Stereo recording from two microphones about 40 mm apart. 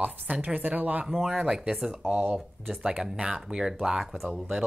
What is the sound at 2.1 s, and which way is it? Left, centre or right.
Speech, right.